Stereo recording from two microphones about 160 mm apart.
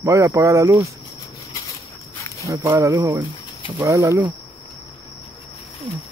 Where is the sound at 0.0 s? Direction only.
20° right (ahead or behind).